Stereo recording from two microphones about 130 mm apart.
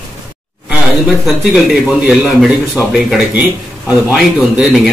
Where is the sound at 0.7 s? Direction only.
5° right (ahead or behind).